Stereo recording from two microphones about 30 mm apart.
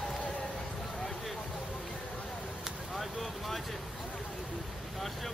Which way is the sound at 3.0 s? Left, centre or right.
Centre.